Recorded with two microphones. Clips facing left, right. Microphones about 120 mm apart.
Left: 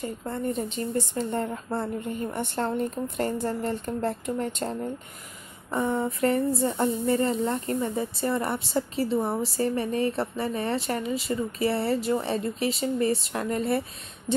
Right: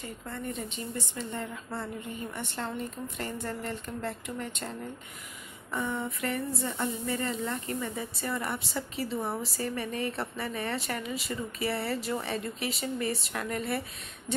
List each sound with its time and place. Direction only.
0.0 s a woman's voice: 40° left (ahead or behind)